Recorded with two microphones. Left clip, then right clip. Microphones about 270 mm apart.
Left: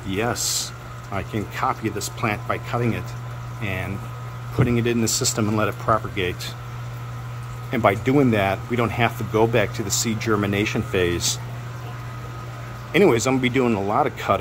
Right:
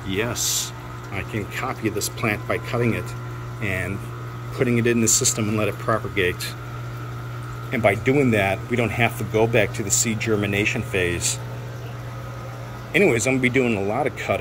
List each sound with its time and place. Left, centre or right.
0.1 s speech: centre
7.7 s speech: centre
12.9 s speech: centre